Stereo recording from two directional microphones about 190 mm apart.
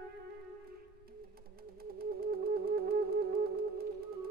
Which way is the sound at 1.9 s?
50° right (ahead or behind).